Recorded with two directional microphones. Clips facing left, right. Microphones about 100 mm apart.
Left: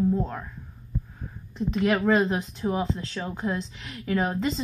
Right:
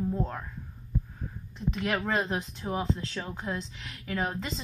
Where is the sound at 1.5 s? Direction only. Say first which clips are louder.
Left 6 dB; 25° left (ahead or behind).